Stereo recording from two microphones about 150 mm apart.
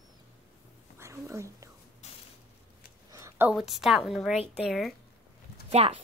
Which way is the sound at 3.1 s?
20° right (ahead or behind).